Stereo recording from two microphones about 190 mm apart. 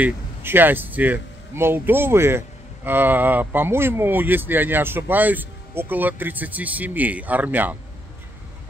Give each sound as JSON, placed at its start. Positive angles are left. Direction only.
{"t": 0.0, "sound": "speech", "side_deg": -10}